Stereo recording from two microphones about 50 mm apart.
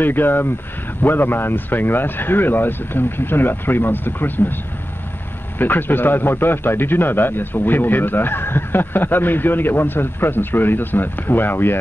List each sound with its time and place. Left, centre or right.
0.0 s a man's voice: left
5.6 s a man's voice: left